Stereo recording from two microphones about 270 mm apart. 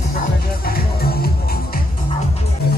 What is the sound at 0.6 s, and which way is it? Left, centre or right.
Music, left.